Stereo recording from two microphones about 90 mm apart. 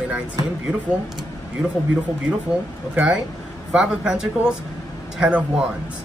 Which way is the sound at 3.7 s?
10° right (ahead or behind).